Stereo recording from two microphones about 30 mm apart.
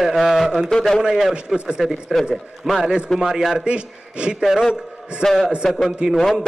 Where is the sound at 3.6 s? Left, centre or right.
Right.